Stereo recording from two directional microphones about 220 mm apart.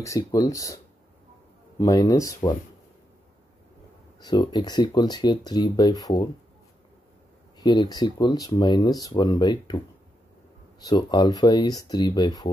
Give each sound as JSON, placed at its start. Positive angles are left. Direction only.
{"t": 0.0, "sound": "speech", "side_deg": 15}
{"t": 1.8, "sound": "speech", "side_deg": 15}
{"t": 4.2, "sound": "speech", "side_deg": 20}
{"t": 7.5, "sound": "speech", "side_deg": 20}
{"t": 10.8, "sound": "speech", "side_deg": 20}